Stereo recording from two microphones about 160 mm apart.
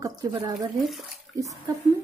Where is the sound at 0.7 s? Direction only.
Centre (ahead or behind).